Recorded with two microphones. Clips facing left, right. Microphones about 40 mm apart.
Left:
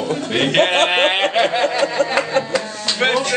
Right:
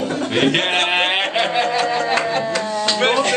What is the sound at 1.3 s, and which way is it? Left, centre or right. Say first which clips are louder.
Snicker: left 2 dB; centre.